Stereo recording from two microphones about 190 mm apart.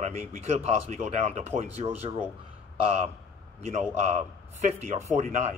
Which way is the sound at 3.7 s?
35° right (ahead or behind).